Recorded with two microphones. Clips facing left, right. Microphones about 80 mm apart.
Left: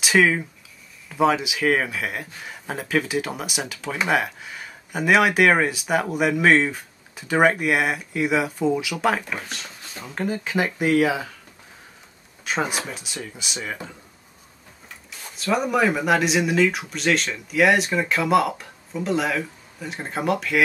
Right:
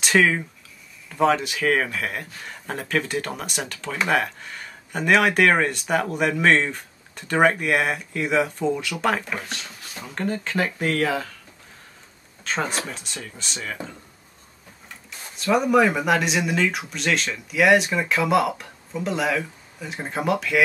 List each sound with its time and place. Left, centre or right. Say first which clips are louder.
0.0 s speech: left 1 dB; centre
12.4 s speech: left 1 dB; centre
15.3 s speech: right 3 dB; centre